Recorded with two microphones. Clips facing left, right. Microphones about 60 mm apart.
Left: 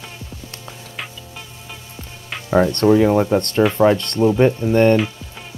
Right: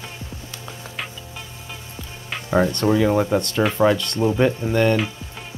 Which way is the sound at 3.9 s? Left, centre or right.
Left.